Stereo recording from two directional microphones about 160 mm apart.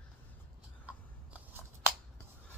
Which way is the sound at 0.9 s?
10° right (ahead or behind).